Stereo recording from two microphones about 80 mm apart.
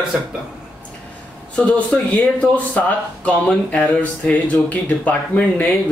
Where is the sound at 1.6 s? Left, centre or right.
Centre.